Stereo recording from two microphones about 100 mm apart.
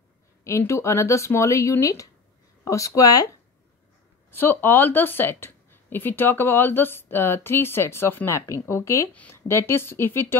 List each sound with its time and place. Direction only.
0.4 s a woman's voice: 30° left (ahead or behind)
4.3 s a woman's voice: 20° left (ahead or behind)
9.1 s speech: 15° left (ahead or behind)
9.5 s a woman's voice: 25° left (ahead or behind)